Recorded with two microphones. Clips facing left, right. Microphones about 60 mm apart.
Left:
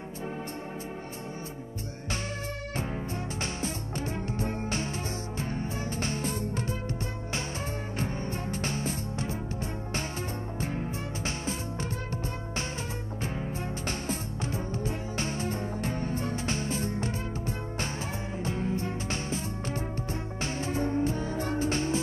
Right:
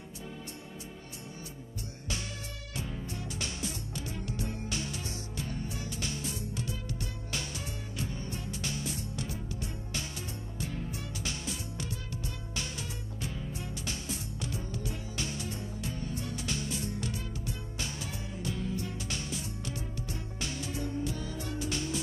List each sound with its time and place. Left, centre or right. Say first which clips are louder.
2.7 s music: left 4 dB; left
8.0 s music: left 5 dB; left
10.6 s music: left 4 dB; left
13.2 s music: left 5 dB; left